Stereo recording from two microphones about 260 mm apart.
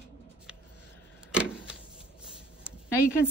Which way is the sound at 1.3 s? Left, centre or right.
Centre.